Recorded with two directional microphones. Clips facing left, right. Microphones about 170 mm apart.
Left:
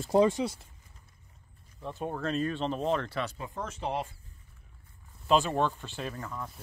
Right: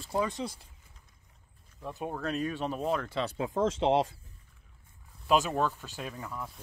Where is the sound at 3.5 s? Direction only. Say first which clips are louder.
Right 9 dB; 90° right.